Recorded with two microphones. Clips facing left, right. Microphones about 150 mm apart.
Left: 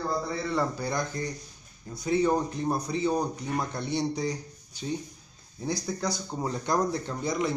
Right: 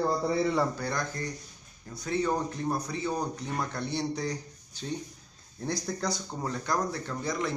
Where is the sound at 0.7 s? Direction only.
15° left (ahead or behind).